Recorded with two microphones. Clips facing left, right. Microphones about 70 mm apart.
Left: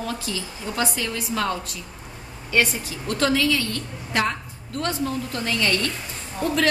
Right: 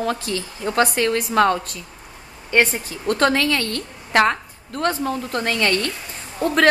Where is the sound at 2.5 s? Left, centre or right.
Right.